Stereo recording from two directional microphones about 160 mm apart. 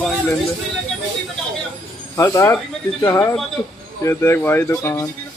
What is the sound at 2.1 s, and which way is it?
Speech, 20° left (ahead or behind).